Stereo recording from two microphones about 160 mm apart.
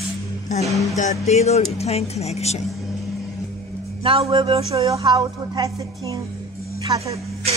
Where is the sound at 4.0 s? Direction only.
35° right (ahead or behind).